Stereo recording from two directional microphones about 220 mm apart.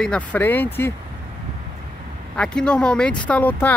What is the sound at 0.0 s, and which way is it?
Speech, 5° left (ahead or behind).